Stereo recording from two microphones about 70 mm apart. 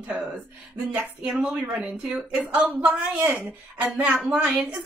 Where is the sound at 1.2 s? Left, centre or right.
Centre.